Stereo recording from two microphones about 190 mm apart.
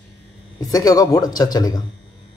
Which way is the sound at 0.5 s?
20° left (ahead or behind).